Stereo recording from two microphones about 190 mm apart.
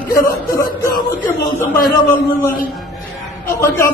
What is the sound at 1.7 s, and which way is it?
Speech, 50° left (ahead or behind).